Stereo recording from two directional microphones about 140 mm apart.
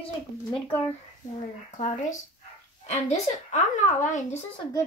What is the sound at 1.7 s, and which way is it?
A child's voice, 60° left (ahead or behind).